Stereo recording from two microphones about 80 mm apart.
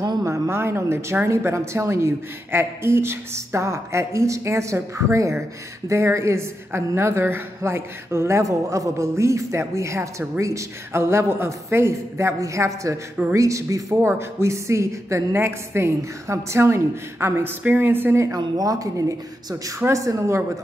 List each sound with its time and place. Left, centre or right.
0.2 s a woman's voice: right